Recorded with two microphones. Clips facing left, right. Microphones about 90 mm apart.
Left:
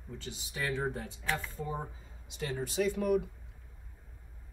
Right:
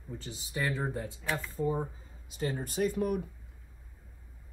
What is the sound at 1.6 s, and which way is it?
Speech, centre (ahead or behind).